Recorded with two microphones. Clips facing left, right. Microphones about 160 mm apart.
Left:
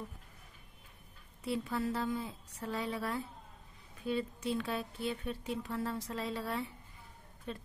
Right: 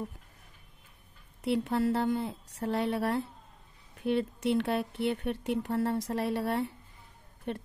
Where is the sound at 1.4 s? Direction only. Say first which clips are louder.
Right 7 dB; 70° right (ahead or behind).